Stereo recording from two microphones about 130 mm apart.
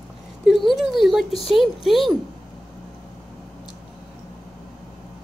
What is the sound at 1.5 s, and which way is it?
Speech, centre (ahead or behind).